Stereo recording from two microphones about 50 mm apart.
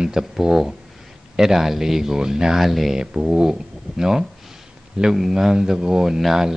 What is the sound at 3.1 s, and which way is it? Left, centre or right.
Speech, centre.